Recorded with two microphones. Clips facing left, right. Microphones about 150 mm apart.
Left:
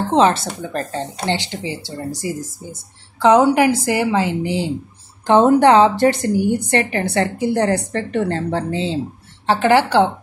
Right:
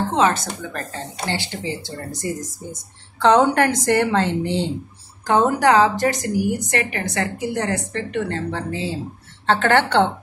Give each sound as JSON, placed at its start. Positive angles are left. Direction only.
{"t": 0.1, "sound": "a woman's voice", "side_deg": 30}
{"t": 3.2, "sound": "speech", "side_deg": 10}
{"t": 5.2, "sound": "a woman's voice", "side_deg": 25}
{"t": 9.5, "sound": "speech", "side_deg": 10}